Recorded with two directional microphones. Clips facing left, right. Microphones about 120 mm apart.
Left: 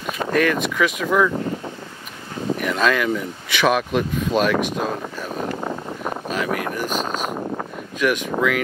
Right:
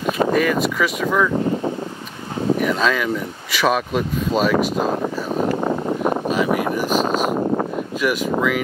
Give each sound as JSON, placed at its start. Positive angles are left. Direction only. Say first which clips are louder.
{"t": 0.3, "sound": "speech", "louder": "right 2 dB", "side_deg": 0}
{"t": 2.6, "sound": "speech", "louder": "right 1 dB", "side_deg": 0}
{"t": 5.6, "sound": "a sound", "louder": "right 7 dB", "side_deg": -50}
{"t": 6.3, "sound": "speech", "louder": "right 5 dB", "side_deg": -5}
{"t": 6.9, "sound": "speech", "louder": "right 6 dB", "side_deg": -40}
{"t": 8.0, "sound": "speech", "louder": "even", "side_deg": -5}